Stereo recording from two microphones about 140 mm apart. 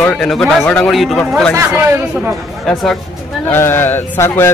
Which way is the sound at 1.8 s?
15° right (ahead or behind).